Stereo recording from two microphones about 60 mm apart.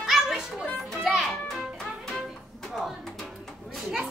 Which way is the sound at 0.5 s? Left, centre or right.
Centre.